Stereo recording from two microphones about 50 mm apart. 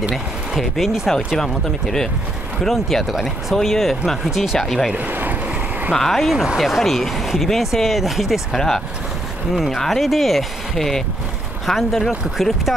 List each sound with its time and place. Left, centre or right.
0.1 s speech: centre
4.6 s speech: centre
4.9 s speech: right
5.9 s speech: centre